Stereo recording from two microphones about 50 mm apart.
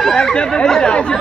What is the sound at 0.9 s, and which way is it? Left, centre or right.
Speech, left.